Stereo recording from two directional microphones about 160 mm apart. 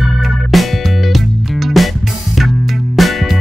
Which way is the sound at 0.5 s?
Centre (ahead or behind).